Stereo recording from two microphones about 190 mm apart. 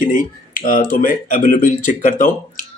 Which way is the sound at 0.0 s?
45° left (ahead or behind).